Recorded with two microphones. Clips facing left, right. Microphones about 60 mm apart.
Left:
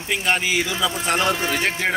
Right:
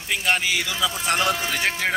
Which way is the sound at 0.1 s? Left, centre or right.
Centre.